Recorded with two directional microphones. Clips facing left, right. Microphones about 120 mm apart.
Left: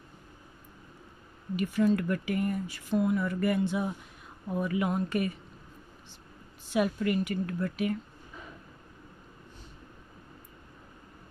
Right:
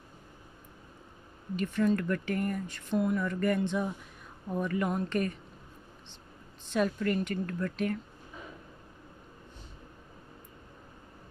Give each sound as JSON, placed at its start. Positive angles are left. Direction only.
{"t": 1.6, "sound": "speech", "side_deg": 5}
{"t": 6.7, "sound": "speech", "side_deg": 10}